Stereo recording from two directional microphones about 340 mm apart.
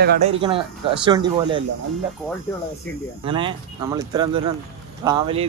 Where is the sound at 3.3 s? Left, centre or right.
Centre.